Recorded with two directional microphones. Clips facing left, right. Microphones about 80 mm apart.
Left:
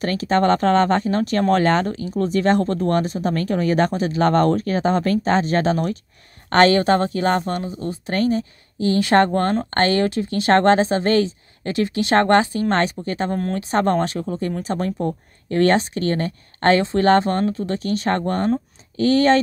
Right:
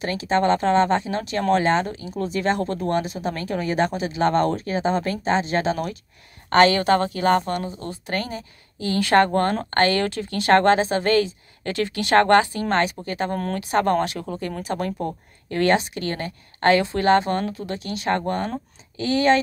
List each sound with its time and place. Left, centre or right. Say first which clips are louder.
0.2 s speech: left 2 dB; left